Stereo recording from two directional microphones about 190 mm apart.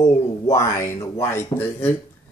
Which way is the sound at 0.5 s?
15° left (ahead or behind).